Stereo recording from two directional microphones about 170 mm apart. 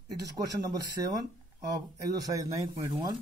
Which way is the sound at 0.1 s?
20° right (ahead or behind).